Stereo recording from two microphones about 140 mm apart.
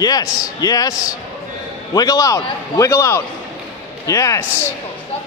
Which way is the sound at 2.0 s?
25° left (ahead or behind).